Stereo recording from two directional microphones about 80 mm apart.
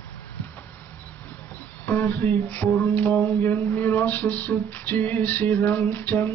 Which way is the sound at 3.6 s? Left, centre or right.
Left.